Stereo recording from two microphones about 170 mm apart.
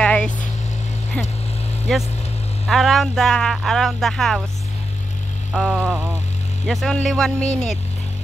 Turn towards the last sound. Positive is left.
turn(degrees=5)  # may be behind; listen again after turning